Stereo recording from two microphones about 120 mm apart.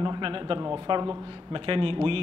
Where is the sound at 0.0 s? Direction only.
40° right (ahead or behind).